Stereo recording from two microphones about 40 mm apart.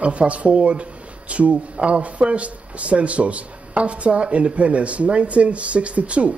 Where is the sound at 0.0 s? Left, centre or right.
Right.